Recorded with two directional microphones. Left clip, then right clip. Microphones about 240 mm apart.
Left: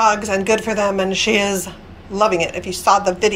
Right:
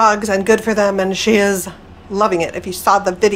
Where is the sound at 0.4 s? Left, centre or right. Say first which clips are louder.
Right 3 dB; right.